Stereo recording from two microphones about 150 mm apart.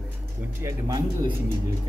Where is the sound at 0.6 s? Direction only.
25° right (ahead or behind).